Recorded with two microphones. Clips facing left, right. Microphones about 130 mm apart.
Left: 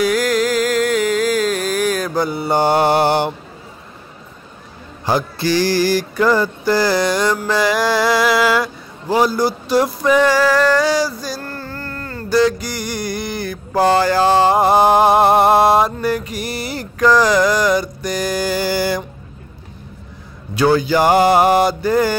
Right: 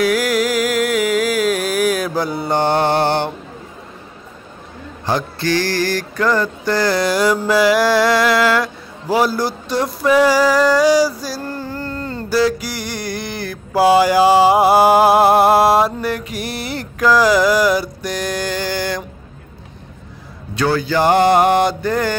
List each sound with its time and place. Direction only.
0.0 s music: 5° right (ahead or behind); by 3.3 s 10° left (ahead or behind)
5.0 s mantra: 10° left (ahead or behind)
10.0 s a sound: 5° right (ahead or behind)
12.3 s mantra: 5° right (ahead or behind)
20.5 s mantra: 15° left (ahead or behind)